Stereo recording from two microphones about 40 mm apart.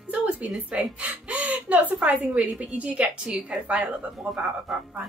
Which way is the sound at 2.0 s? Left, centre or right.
Right.